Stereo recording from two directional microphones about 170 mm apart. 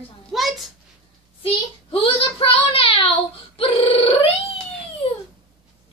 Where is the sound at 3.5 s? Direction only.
35° left (ahead or behind).